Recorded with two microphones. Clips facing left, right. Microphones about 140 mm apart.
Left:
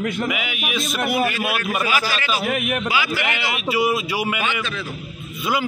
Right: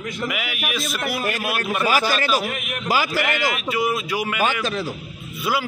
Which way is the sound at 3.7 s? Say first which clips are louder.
Left 6 dB; 5° left (ahead or behind).